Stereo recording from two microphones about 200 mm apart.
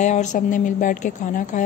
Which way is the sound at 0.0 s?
35° left (ahead or behind).